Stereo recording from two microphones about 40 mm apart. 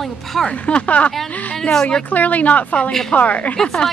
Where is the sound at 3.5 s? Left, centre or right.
Centre.